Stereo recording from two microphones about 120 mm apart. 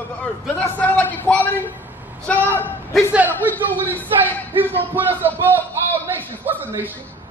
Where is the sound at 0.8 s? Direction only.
10° left (ahead or behind).